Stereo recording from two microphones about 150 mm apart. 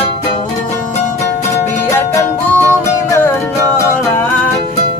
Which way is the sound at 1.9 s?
15° left (ahead or behind).